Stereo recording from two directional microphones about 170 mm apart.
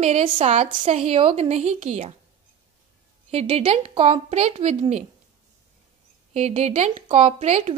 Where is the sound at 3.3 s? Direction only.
35° right (ahead or behind).